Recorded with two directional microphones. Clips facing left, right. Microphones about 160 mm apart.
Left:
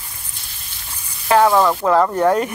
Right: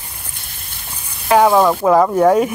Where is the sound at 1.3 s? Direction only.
15° right (ahead or behind).